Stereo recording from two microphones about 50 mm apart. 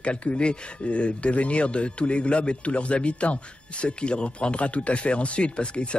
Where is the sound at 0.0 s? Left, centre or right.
Left.